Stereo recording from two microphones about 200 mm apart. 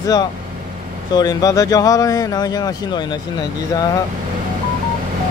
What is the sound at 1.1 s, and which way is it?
Speech, 20° left (ahead or behind).